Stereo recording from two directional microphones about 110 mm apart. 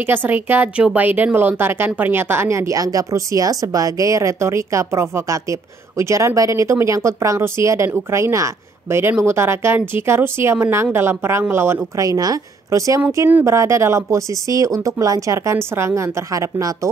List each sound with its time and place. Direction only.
0.0 s a woman's voice: 20° right (ahead or behind)